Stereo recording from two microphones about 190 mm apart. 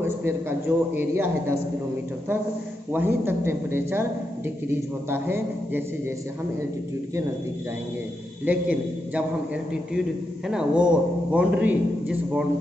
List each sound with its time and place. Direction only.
0.0 s a man's voice: 10° right (ahead or behind)
2.9 s a man's voice: 10° right (ahead or behind)
8.5 s a man's voice: 5° right (ahead or behind)
10.5 s a man's voice: 5° right (ahead or behind)